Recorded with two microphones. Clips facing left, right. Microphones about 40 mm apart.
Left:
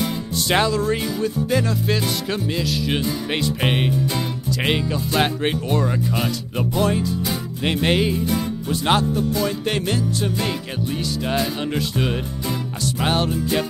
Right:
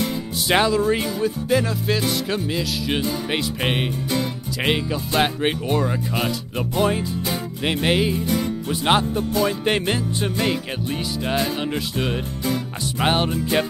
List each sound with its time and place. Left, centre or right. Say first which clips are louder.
0.5 s music: right 1 dB; centre
1.5 s speech: right 2 dB; centre
6.8 s music: even; centre
7.6 s speech: left 1 dB; centre
8.8 s music: even; centre
13.0 s music: right 1 dB; centre